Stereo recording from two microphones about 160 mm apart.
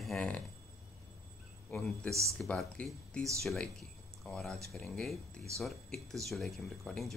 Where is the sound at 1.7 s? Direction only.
Centre (ahead or behind).